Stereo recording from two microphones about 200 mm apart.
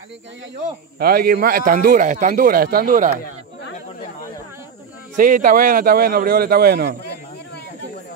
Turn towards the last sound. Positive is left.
turn(degrees=-50)  # may be behind; listen again after turning